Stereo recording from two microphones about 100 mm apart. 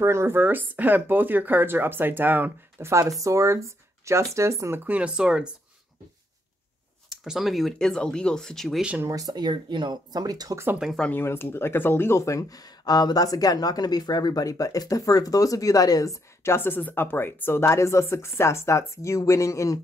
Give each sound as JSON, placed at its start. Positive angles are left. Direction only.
{"t": 0.0, "sound": "speech", "side_deg": -25}
{"t": 2.9, "sound": "speech", "side_deg": -30}
{"t": 7.1, "sound": "speech", "side_deg": -5}
{"t": 9.0, "sound": "speech", "side_deg": -35}
{"t": 11.0, "sound": "speech", "side_deg": 20}